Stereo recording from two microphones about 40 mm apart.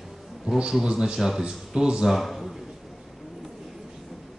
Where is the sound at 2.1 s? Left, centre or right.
Centre.